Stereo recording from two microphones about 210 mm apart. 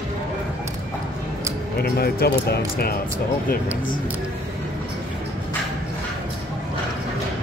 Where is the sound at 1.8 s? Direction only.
50° left (ahead or behind).